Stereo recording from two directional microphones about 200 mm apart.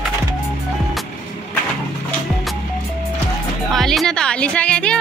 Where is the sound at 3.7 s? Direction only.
Centre (ahead or behind).